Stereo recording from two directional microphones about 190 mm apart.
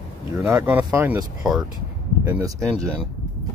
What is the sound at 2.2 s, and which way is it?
Speech, 15° right (ahead or behind).